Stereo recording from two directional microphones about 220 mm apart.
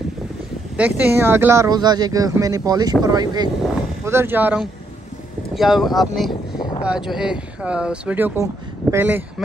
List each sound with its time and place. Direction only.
0.7 s speech: 5° right (ahead or behind)